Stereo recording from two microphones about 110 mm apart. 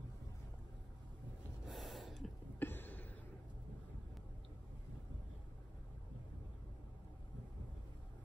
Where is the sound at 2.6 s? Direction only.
20° left (ahead or behind).